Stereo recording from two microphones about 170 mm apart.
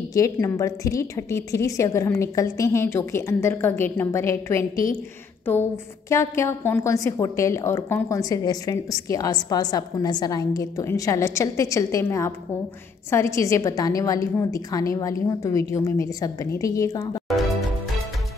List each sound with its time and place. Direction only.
0.1 s a woman's voice: 20° left (ahead or behind)